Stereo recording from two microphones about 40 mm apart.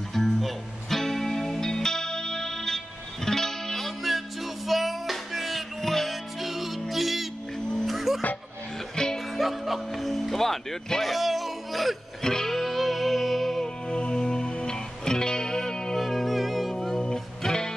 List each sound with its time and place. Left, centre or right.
0.1 s music: centre
8.9 s music: centre
9.4 s music: centre
12.2 s music: centre
13.8 s music: centre
16.0 s music: centre
16.7 s music: centre